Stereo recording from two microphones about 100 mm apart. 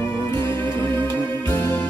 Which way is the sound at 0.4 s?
25° left (ahead or behind).